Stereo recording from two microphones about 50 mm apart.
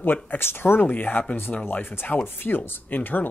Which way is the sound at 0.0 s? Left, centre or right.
Left.